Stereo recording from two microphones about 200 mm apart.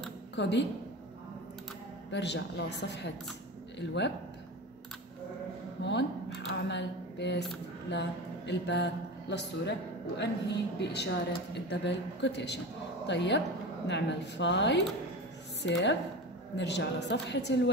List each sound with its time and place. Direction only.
0.4 s speech: 60° left (ahead or behind)
2.0 s speech: 60° left (ahead or behind)
5.8 s a sound: 60° left (ahead or behind)
6.5 s speech: 60° left (ahead or behind)